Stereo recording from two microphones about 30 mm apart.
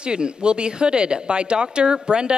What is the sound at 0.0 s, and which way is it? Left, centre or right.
Speech, right.